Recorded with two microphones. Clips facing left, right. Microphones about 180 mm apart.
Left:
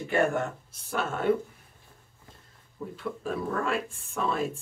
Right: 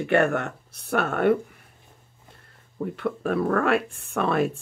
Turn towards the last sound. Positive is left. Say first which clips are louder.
# right 6 dB
turn(degrees=-65)  # may be behind; listen again after turning